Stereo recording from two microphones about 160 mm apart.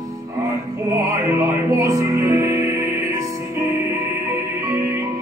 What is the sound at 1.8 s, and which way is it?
Music, 20° right (ahead or behind).